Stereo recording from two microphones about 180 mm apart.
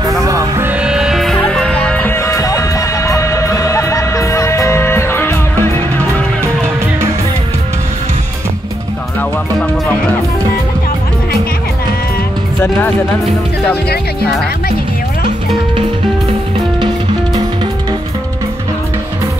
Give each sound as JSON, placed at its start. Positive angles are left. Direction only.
{"t": 0.2, "sound": "music", "side_deg": -15}